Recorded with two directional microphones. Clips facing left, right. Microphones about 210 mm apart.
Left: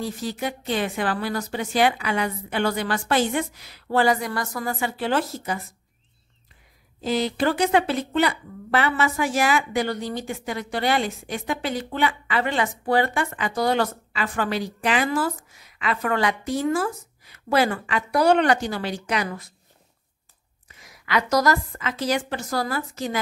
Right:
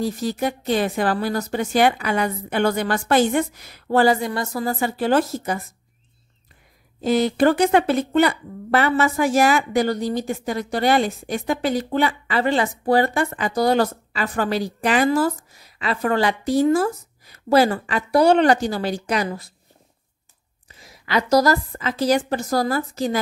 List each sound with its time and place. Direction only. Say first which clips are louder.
0.0 s speech: right 5 dB; 40° right (ahead or behind)
4.1 s speech: right 3 dB; 25° right (ahead or behind); by 5.6 s 45° right (ahead or behind)
7.0 s speech: right 6 dB; 50° right (ahead or behind)
20.8 s speech: right 2 dB; 30° right (ahead or behind)